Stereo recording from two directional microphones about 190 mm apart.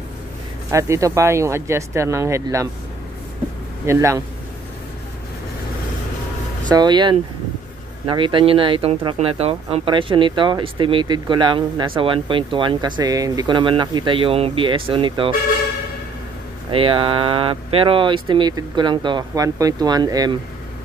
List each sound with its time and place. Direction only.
0.7 s speech: 15° right (ahead or behind)
3.8 s speech: 15° right (ahead or behind)
6.7 s speech: 25° right (ahead or behind)
16.7 s speech: 30° right (ahead or behind)